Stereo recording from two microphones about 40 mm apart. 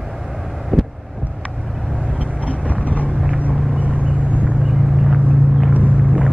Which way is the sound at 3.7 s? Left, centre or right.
Right.